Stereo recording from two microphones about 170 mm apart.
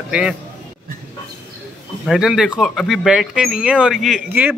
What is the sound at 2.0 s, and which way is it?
Music, 5° right (ahead or behind).